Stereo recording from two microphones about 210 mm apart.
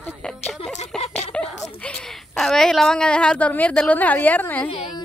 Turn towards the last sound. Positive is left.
turn(degrees=10)  # may be behind; listen again after turning